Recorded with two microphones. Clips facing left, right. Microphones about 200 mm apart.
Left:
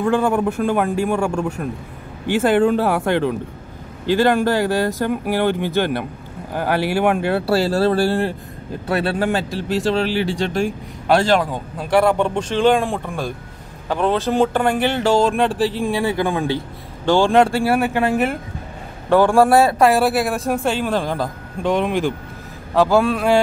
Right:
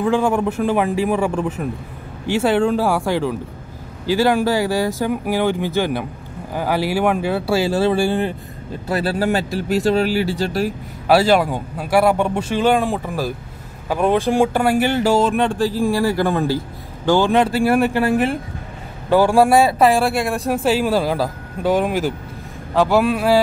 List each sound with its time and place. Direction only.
0.0 s speech: centre (ahead or behind)
9.7 s speech: 40° right (ahead or behind)
10.1 s speech: 5° right (ahead or behind)
17.8 s speech: 15° left (ahead or behind)
19.0 s speech: 5° right (ahead or behind)